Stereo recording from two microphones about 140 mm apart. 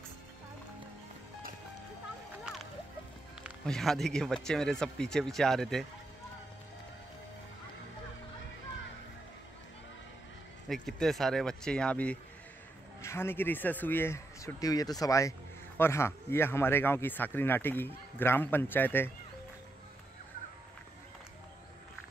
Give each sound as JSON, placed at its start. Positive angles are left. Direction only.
{"t": 3.6, "sound": "speech", "side_deg": 5}
{"t": 10.7, "sound": "speech", "side_deg": 0}